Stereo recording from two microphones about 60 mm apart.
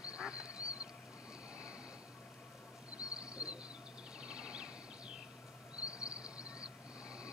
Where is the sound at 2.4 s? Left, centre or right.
Centre.